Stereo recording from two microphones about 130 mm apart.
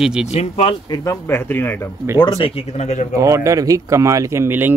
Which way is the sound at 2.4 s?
50° left (ahead or behind).